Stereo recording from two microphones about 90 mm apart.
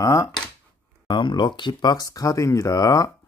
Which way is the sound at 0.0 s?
35° left (ahead or behind).